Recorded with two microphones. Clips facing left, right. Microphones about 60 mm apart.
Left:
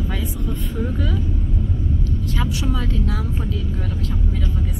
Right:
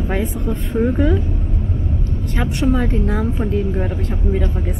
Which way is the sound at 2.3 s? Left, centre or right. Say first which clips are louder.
Right 8 dB; right.